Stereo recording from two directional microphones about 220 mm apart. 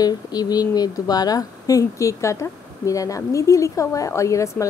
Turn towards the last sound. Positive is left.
turn(degrees=15)  # may be behind; listen again after turning